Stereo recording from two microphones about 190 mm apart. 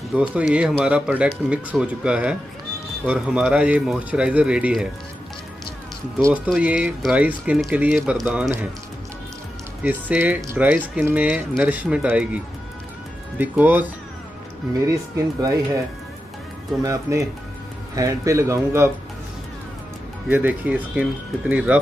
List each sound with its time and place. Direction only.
0.3 s speech: 5° right (ahead or behind)
6.2 s speech: 5° right (ahead or behind)
9.8 s speech: 10° right (ahead or behind)
13.4 s speech: 10° right (ahead or behind)
14.9 s speech: 15° right (ahead or behind)
16.8 s speech: 15° right (ahead or behind)
20.2 s speech: 10° right (ahead or behind)